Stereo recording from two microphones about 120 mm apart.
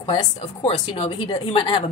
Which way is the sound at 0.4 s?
60° left (ahead or behind).